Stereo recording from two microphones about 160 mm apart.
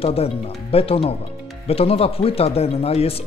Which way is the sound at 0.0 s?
35° left (ahead or behind).